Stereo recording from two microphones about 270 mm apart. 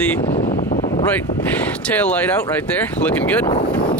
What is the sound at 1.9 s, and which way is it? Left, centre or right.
Speech, centre.